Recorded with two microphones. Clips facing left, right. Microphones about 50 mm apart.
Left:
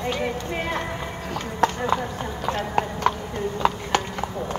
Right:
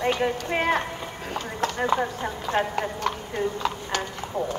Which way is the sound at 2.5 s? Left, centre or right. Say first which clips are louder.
Right 3 dB; left.